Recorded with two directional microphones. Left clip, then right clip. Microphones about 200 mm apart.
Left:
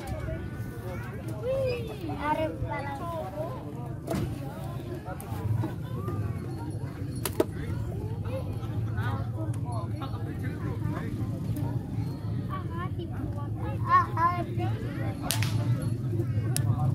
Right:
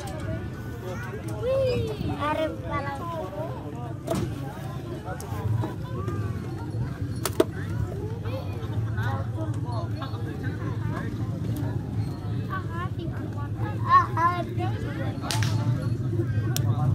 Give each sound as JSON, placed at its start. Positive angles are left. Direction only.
{"t": 1.4, "sound": "a sound", "side_deg": -45}
{"t": 7.2, "sound": "pigeon", "side_deg": -30}
{"t": 13.8, "sound": "vehicle", "side_deg": -35}